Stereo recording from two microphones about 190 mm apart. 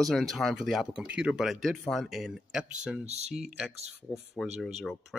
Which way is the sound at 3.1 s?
35° right (ahead or behind).